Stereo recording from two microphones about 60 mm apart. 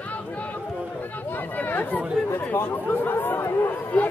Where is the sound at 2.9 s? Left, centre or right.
Left.